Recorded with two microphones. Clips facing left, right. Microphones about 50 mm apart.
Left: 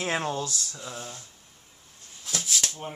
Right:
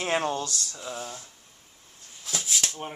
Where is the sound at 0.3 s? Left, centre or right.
Centre.